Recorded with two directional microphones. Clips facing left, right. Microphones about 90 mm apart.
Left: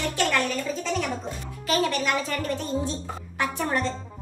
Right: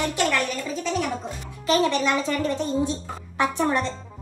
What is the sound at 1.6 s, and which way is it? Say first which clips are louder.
A woman's voice: right 4 dB; 25° right (ahead or behind).